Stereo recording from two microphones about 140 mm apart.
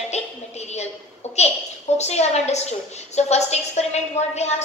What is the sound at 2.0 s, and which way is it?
A woman's voice, 50° left (ahead or behind).